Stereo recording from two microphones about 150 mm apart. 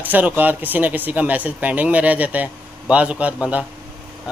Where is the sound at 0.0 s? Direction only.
10° right (ahead or behind).